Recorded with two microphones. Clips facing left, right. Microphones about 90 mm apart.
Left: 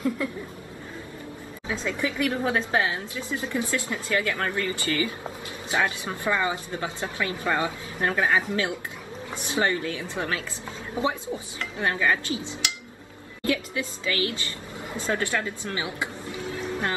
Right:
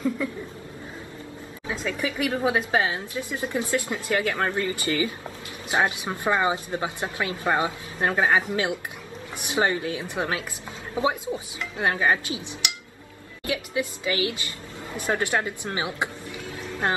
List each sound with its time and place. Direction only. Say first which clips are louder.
0.2 s chuckle: right 1 dB; centre (ahead or behind)
1.7 s speech: even; 15° right (ahead or behind)